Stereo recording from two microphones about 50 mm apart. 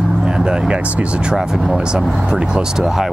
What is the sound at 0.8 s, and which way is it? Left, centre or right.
Speech, right.